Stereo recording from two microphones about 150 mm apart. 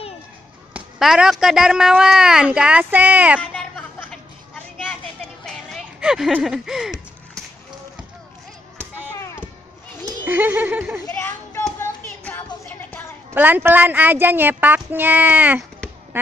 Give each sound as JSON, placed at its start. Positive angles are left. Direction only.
{"t": 0.7, "sound": "speech", "side_deg": -5}
{"t": 3.3, "sound": "a sound", "side_deg": 10}
{"t": 5.9, "sound": "speech", "side_deg": -5}
{"t": 9.1, "sound": "chop", "side_deg": 15}
{"t": 10.0, "sound": "speech", "side_deg": -15}
{"t": 11.1, "sound": "a sound", "side_deg": 15}
{"t": 13.3, "sound": "a child's voice", "side_deg": -15}